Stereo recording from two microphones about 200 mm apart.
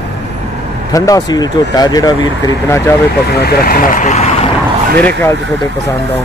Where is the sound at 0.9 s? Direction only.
20° left (ahead or behind).